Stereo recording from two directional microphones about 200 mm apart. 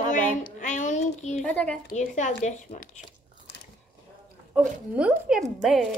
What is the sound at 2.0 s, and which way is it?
Speech, 35° left (ahead or behind).